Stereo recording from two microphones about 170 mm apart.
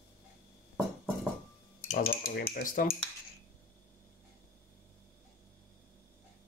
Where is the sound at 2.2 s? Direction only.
70° left (ahead or behind); by 3.0 s 50° left (ahead or behind).